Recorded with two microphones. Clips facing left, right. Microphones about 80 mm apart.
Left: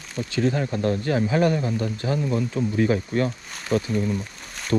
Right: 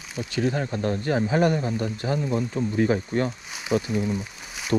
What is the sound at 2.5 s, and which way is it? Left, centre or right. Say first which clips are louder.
Speech: left 1 dB; left.